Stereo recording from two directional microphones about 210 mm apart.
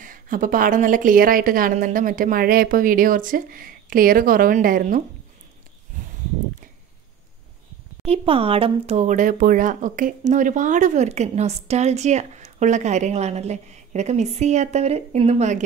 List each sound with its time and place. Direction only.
0.0 s speech: 40° right (ahead or behind)
5.9 s a sound: 40° right (ahead or behind)
8.0 s speech: 25° right (ahead or behind)